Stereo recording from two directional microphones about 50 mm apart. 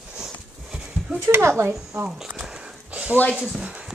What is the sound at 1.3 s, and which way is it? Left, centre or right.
Speech, right.